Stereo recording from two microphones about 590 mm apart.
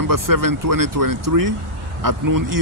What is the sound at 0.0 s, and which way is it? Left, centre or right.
A man's voice, right.